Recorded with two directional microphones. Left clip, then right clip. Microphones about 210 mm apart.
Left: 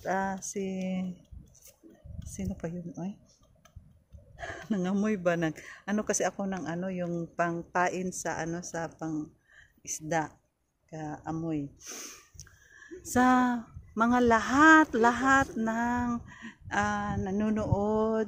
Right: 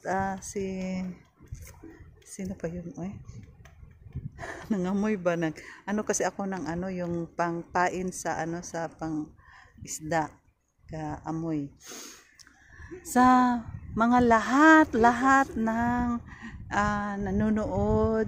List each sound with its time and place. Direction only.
0.0 s speech: 5° left (ahead or behind)
2.1 s speech: centre (ahead or behind)
4.4 s speech: 5° right (ahead or behind)